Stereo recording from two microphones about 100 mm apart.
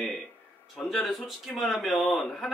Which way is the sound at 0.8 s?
Centre (ahead or behind).